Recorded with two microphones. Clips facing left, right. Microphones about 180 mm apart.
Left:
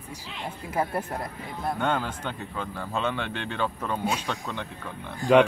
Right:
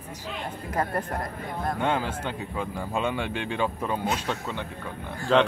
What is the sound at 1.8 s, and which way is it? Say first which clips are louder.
Speech: right 1 dB; 5° right (ahead or behind).